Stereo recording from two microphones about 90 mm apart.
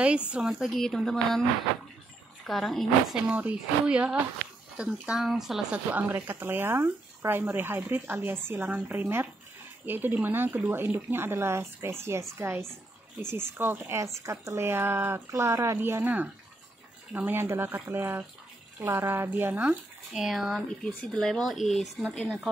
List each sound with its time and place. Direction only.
0.0 s speech: 10° right (ahead or behind); by 1.4 s 5° left (ahead or behind)
2.4 s speech: centre (ahead or behind)
3.3 s speech: 15° right (ahead or behind)
6.1 s speech: 25° right (ahead or behind)
20.1 s speech: 5° right (ahead or behind)